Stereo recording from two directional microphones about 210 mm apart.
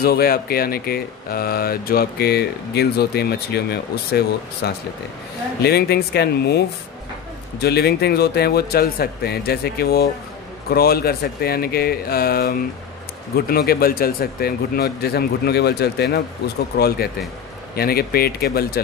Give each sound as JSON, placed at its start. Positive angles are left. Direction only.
{"t": 0.0, "sound": "speech", "side_deg": 45}
{"t": 7.6, "sound": "speech", "side_deg": 50}